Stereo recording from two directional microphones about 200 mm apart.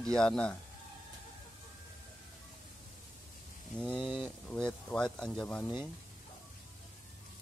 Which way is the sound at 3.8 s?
Centre (ahead or behind).